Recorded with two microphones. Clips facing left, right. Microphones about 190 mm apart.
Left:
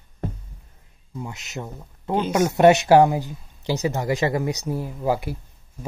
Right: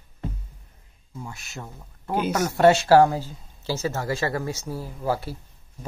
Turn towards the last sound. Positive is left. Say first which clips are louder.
# left 3 dB
turn(degrees=15)  # may be behind; listen again after turning